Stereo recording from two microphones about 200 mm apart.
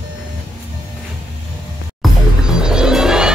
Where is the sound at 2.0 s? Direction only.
5° right (ahead or behind).